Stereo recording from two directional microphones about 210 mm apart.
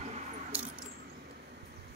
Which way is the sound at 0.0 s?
30° right (ahead or behind).